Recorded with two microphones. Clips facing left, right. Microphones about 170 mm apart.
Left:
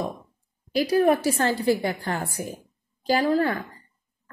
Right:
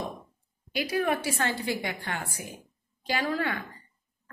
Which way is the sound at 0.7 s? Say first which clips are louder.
Left 8 dB; 40° left (ahead or behind).